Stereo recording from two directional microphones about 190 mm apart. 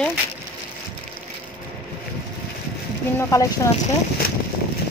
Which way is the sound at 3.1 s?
15° left (ahead or behind).